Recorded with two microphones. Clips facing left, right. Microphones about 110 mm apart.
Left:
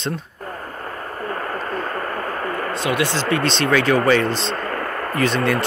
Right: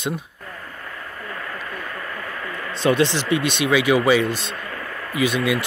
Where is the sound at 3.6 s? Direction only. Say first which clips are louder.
Even; 10° right (ahead or behind).